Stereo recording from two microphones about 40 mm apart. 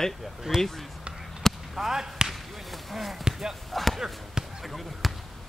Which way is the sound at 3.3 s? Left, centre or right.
Centre.